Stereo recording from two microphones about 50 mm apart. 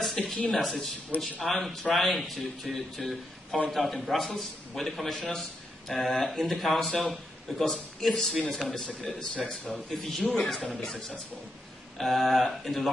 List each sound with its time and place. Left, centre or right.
0.2 s speech: left
0.5 s a man's voice: centre